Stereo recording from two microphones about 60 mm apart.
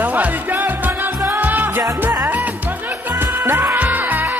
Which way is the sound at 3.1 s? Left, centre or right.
Right.